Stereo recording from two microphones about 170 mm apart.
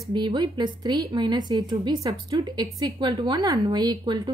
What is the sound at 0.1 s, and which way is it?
A woman's voice, 25° right (ahead or behind).